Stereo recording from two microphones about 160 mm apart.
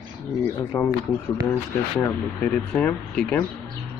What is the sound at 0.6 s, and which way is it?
Speech, 15° left (ahead or behind).